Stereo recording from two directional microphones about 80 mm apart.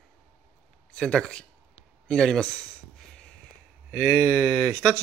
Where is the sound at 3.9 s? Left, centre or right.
Centre.